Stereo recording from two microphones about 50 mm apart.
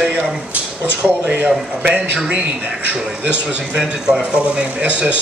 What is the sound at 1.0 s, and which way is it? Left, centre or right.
Speech, right.